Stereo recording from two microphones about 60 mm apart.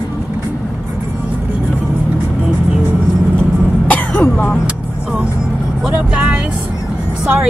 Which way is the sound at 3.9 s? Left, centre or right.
Left.